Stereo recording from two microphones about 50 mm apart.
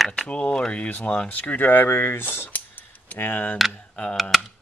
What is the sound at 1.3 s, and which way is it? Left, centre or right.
Speech, left.